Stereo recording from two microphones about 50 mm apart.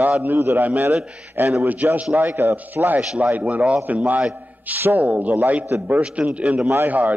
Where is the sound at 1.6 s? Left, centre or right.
Right.